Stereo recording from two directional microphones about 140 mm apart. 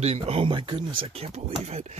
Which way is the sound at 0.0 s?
45° right (ahead or behind).